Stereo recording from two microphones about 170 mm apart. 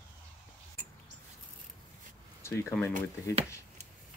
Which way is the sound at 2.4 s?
15° left (ahead or behind).